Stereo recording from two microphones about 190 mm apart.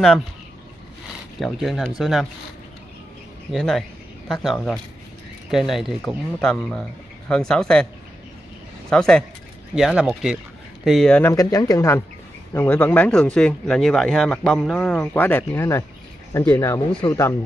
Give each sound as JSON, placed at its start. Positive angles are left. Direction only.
{"t": 1.4, "sound": "speech", "side_deg": 0}
{"t": 3.5, "sound": "speech", "side_deg": 0}
{"t": 8.9, "sound": "speech", "side_deg": 5}
{"t": 11.3, "sound": "speech", "side_deg": 20}